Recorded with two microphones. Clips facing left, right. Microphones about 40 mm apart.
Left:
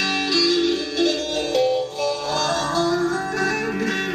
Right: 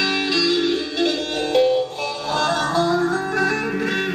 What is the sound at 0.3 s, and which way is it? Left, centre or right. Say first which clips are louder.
Music: left 2 dB; centre.